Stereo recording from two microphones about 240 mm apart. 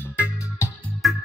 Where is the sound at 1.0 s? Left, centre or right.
Centre.